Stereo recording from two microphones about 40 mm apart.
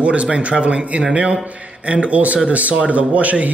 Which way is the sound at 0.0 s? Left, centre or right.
Right.